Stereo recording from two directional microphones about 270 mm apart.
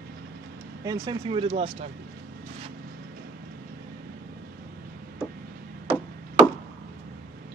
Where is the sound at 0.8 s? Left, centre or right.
Centre.